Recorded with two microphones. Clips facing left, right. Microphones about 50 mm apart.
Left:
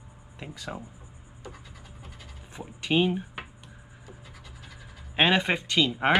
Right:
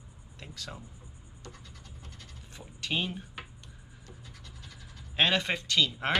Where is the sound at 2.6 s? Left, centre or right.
Centre.